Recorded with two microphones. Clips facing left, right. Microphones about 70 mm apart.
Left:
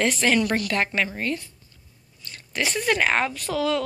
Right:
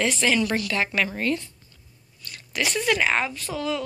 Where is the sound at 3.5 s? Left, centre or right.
Left.